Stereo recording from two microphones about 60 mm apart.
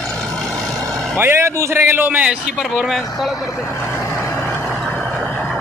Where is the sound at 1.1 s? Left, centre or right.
Right.